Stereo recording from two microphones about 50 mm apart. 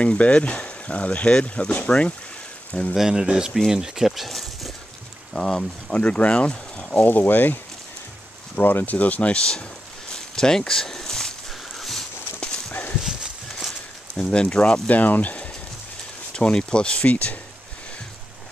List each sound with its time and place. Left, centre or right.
0.0 s speech: left
3.0 s speech: centre
5.3 s speech: centre
7.1 s speech: left
8.5 s speech: left
10.1 s a sound: centre
13.0 s horse: centre
13.7 s a sound: centre
14.9 s speech: left
16.3 s speech: centre
17.1 s speech: left